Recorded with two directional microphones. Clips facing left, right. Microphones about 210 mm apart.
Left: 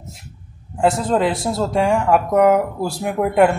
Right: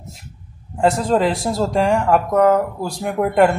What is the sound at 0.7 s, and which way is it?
Speech, centre (ahead or behind).